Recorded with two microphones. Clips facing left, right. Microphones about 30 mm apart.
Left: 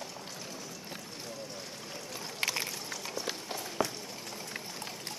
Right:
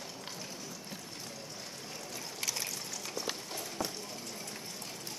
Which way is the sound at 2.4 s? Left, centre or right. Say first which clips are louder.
Left 5 dB; left.